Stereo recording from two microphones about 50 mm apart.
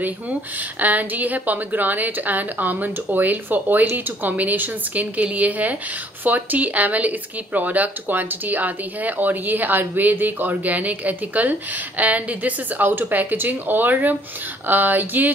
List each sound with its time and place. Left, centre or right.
0.7 s speech: right